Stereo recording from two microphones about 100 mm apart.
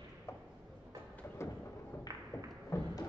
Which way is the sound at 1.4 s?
25° left (ahead or behind).